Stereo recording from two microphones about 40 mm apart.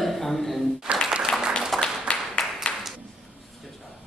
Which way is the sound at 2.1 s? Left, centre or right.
Left.